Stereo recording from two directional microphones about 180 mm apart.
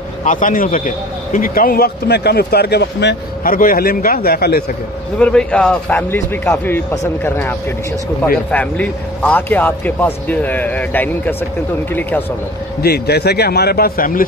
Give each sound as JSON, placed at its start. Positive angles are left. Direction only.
{"t": 0.2, "sound": "a man's voice", "side_deg": 45}
{"t": 3.5, "sound": "a man's voice", "side_deg": 50}
{"t": 5.2, "sound": "a man's voice", "side_deg": 5}
{"t": 12.8, "sound": "a man's voice", "side_deg": 60}